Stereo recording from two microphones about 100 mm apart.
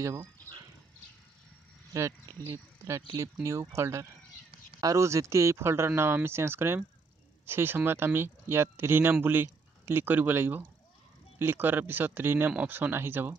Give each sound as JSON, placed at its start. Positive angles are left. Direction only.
{"t": 2.0, "sound": "speech", "side_deg": -30}